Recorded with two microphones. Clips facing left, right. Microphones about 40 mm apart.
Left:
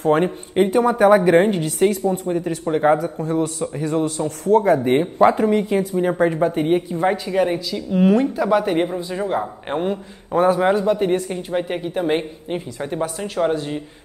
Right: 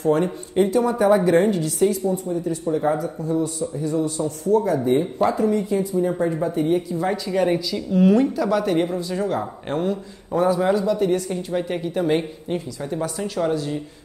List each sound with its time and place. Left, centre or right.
0.0 s a woman's voice: left
7.4 s speech: centre
8.3 s speech: left
12.8 s speech: left